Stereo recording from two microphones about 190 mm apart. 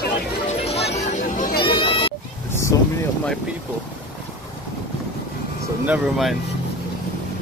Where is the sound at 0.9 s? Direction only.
40° left (ahead or behind).